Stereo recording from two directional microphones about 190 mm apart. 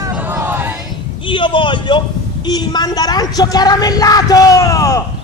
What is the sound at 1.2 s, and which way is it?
A man's voice, 25° left (ahead or behind).